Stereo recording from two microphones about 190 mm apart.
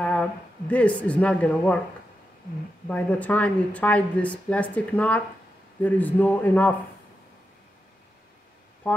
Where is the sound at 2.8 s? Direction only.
10° left (ahead or behind).